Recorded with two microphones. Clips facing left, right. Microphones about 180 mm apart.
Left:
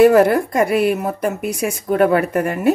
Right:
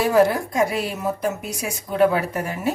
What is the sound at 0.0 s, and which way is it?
A woman's voice, 60° left (ahead or behind).